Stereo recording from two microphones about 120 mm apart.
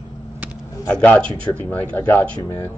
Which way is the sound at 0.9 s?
10° left (ahead or behind).